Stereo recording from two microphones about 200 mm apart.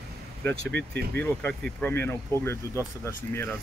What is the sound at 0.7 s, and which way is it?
Speech, 55° right (ahead or behind).